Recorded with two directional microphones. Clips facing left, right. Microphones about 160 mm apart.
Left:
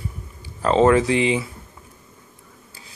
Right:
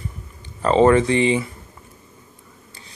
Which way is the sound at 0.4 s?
Centre (ahead or behind).